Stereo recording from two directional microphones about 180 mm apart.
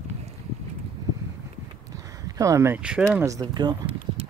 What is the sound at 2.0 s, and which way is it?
Speech, 20° right (ahead or behind).